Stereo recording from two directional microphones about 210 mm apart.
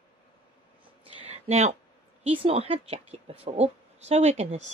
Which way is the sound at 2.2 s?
25° right (ahead or behind).